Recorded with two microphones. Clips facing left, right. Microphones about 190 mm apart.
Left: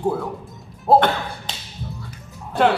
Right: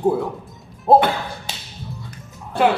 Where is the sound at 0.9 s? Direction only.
20° right (ahead or behind).